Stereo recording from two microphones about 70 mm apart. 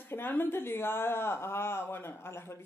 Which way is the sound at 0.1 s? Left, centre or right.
Left.